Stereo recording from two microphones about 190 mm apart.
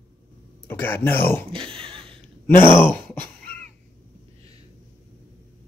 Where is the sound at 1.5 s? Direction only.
30° right (ahead or behind).